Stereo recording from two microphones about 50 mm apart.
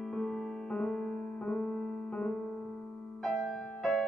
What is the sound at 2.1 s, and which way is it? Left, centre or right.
Piano, centre.